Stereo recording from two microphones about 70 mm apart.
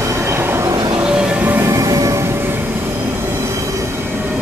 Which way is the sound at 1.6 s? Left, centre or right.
Right.